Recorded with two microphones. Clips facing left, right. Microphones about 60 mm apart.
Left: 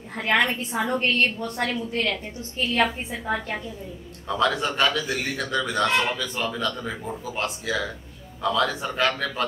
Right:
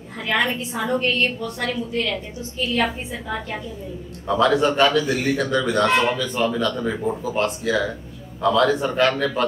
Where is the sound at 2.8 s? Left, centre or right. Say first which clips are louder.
Left 2 dB; left.